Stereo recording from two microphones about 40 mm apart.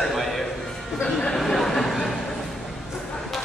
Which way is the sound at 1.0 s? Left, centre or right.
Centre.